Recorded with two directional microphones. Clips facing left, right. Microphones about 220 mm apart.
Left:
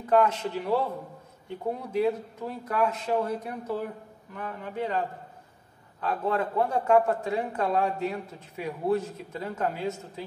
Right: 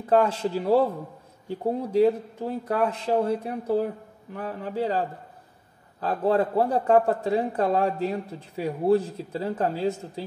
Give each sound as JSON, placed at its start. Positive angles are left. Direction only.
{"t": 0.0, "sound": "a man's voice", "side_deg": -30}